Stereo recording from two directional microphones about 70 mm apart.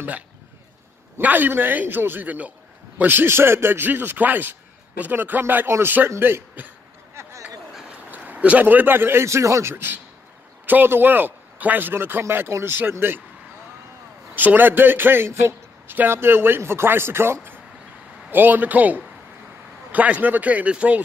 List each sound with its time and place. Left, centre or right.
1.2 s a man's voice: right
7.2 s a sound: right
8.1 s a man's voice: centre
14.3 s a man's voice: right